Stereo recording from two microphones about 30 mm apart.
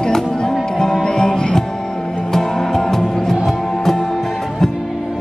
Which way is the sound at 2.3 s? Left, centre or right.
Centre.